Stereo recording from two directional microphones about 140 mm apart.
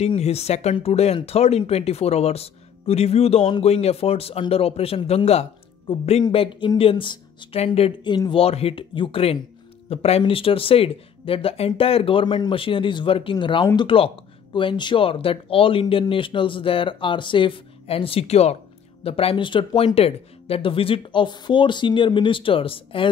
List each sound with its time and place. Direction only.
0.0 s speech: 50° left (ahead or behind)
6.2 s speech: 35° left (ahead or behind)
7.6 s speech: 45° left (ahead or behind)
8.0 s speech: 35° left (ahead or behind)